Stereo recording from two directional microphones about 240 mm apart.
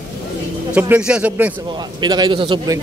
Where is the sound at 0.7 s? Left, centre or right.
Centre.